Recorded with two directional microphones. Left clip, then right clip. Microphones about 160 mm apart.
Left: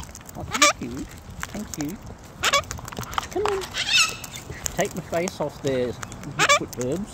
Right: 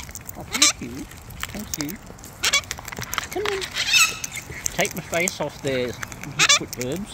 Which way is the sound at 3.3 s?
15° left (ahead or behind).